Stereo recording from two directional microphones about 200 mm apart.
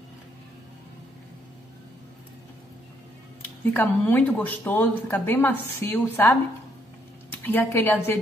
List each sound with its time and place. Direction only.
3.7 s speech: 10° left (ahead or behind)
7.4 s speech: 10° left (ahead or behind)